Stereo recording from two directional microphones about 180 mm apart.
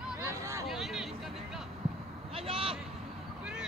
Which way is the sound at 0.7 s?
Centre (ahead or behind).